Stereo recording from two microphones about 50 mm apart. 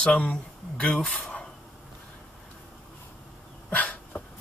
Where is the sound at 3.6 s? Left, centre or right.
Left.